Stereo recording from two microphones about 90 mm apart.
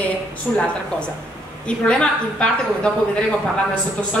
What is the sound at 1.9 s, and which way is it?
A woman's voice, 10° left (ahead or behind).